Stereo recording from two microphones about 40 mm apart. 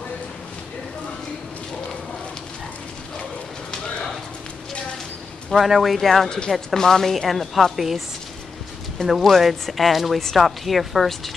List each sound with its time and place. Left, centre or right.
5.5 s a woman's voice: centre
6.2 s speech: centre
6.5 s a woman's voice: centre
9.0 s a woman's voice: centre